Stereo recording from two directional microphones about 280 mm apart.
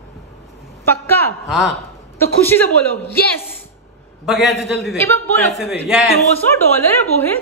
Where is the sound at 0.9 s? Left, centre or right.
Centre.